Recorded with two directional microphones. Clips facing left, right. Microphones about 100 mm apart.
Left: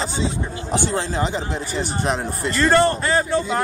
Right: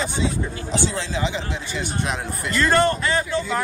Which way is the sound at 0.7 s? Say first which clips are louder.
Left 3 dB; 55° left (ahead or behind).